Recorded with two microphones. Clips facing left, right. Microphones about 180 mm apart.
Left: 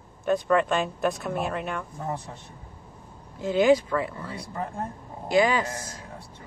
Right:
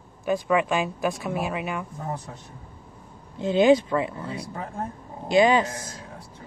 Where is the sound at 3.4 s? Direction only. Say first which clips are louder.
Right 2 dB; 25° right (ahead or behind).